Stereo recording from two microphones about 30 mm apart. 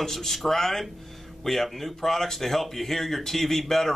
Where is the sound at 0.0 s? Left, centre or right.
Centre.